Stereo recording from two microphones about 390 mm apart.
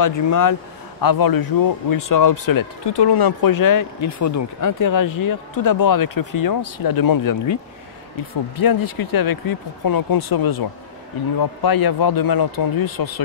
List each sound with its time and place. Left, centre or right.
0.0 s speech: left
1.0 s speech: left
8.5 s speech: left